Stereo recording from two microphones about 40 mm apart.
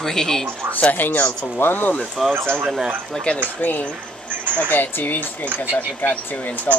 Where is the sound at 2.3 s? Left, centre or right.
Right.